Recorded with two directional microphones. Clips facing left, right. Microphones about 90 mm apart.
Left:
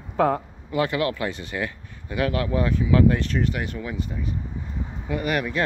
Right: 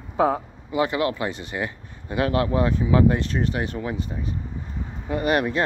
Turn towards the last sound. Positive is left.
turn(degrees=-35)  # may be behind; listen again after turning